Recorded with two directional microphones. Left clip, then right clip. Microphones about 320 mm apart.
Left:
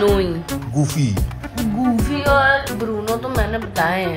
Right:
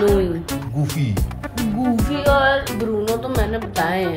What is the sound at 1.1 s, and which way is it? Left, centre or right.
Music, centre.